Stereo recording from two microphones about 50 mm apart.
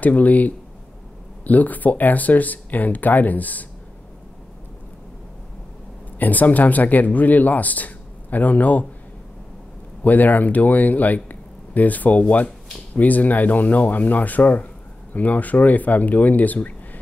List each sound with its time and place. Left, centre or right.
0.0 s speech: left
6.1 s speech: left
10.0 s speech: left